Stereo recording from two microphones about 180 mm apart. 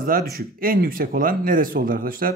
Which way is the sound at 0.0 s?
55° right (ahead or behind).